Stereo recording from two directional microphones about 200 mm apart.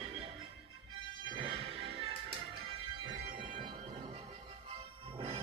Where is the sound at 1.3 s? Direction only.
25° right (ahead or behind).